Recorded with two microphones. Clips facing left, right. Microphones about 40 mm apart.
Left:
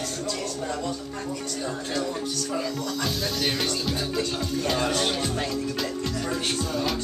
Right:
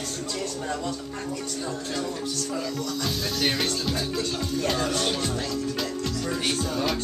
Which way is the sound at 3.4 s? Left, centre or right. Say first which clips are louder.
Right 2 dB; centre.